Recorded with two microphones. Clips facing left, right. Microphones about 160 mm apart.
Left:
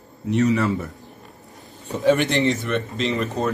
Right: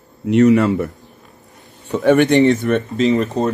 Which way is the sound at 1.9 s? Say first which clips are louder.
Right 6 dB; 75° right (ahead or behind).